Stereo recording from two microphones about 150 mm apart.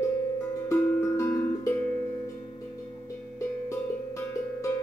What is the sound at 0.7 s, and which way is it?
Music, 20° left (ahead or behind).